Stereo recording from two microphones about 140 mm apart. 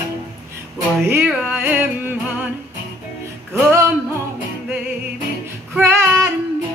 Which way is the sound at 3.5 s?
20° right (ahead or behind).